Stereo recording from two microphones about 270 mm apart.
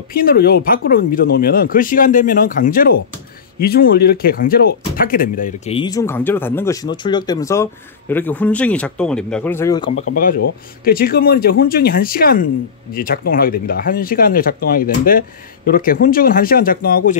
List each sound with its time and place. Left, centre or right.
0.1 s speech: left
5.8 s speech: centre
10.8 s speech: left